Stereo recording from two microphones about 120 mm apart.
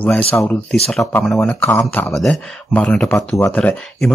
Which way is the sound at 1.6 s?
15° left (ahead or behind).